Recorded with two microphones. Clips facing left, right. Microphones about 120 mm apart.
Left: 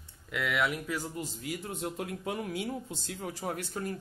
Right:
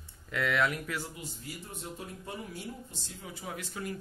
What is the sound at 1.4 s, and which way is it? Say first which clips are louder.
Speech: left 9 dB; 80° left.